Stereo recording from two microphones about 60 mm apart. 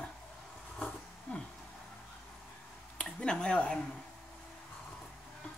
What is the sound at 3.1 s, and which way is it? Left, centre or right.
Speech, centre.